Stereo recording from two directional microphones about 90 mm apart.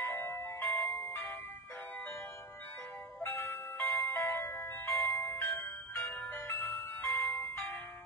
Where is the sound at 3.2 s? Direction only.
25° left (ahead or behind).